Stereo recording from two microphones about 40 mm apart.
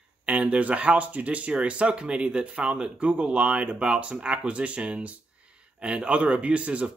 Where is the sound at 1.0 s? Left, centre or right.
Right.